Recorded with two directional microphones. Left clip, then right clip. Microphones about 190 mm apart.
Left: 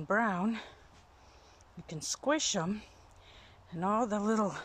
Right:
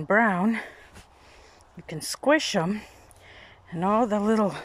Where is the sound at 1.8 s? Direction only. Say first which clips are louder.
Right 9 dB; 5° right (ahead or behind).